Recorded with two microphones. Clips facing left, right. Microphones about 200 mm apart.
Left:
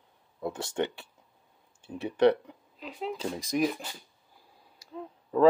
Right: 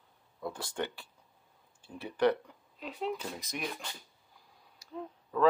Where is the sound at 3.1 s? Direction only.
30° left (ahead or behind).